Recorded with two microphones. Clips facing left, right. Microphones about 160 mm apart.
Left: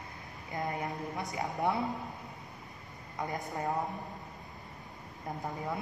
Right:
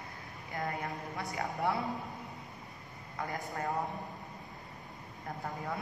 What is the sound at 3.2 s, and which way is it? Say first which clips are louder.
Speech: left 2 dB; 20° left (ahead or behind).